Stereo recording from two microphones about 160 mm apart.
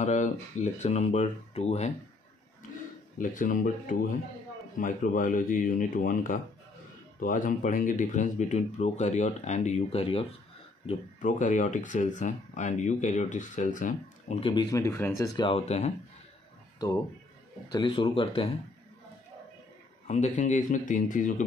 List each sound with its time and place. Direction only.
0.0 s speech: 45° left (ahead or behind)
3.2 s speech: 55° left (ahead or behind); by 10.2 s 35° left (ahead or behind)
10.9 s speech: 50° left (ahead or behind)
14.4 s speech: 25° left (ahead or behind)
17.6 s speech: 30° left (ahead or behind)
20.1 s speech: 45° left (ahead or behind)